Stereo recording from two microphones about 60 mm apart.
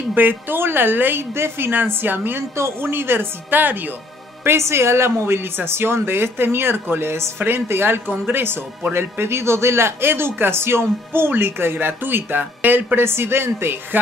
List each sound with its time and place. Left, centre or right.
0.1 s speech: right
2.5 s speech: right
4.5 s speech: right